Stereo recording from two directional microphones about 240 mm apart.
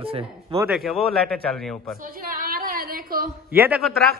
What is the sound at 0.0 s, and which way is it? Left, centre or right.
Speech, right.